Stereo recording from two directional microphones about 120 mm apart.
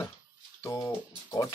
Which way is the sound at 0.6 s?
25° left (ahead or behind).